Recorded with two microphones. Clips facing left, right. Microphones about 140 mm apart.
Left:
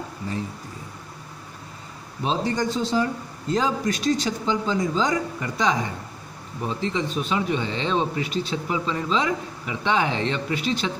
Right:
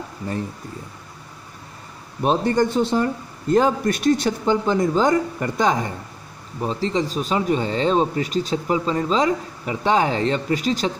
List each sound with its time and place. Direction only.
2.2 s a man's voice: 55° right (ahead or behind)
6.6 s speech: 35° right (ahead or behind)